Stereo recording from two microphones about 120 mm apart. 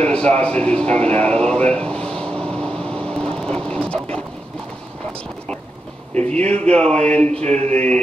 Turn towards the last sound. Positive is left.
turn(degrees=-65)  # may be behind; listen again after turning